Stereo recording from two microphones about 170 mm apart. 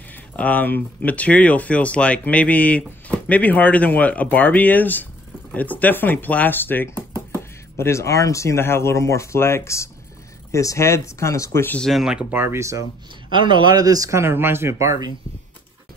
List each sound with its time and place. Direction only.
0.1 s speech: 10° left (ahead or behind); by 12.8 s 15° right (ahead or behind)
13.3 s speech: 30° right (ahead or behind)